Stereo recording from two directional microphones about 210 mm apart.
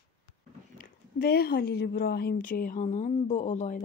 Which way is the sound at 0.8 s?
45° left (ahead or behind).